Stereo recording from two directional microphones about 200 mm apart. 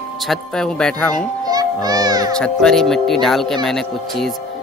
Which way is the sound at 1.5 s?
20° right (ahead or behind).